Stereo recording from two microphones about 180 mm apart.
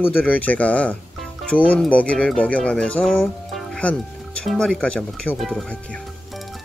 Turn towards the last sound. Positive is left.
turn(degrees=5)  # may be behind; listen again after turning